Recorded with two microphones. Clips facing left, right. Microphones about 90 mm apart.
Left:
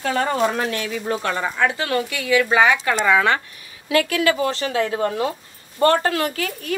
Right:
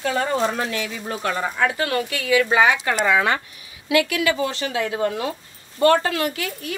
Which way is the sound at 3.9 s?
40° left (ahead or behind).